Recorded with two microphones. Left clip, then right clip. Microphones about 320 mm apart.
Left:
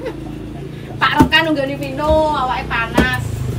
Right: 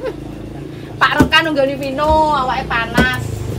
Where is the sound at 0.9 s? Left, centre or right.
Centre.